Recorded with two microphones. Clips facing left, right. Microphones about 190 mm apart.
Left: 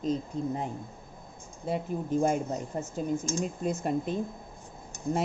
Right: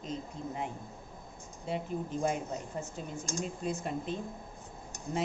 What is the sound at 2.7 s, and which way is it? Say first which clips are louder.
Speech: left 8 dB; 45° left (ahead or behind).